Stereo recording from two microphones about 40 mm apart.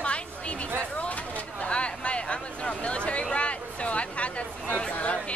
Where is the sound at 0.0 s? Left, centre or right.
Left.